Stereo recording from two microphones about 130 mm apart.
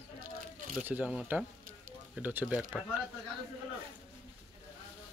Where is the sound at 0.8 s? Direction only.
15° right (ahead or behind).